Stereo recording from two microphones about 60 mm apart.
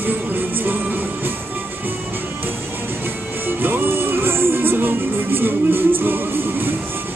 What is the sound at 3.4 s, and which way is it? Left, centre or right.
Music, right.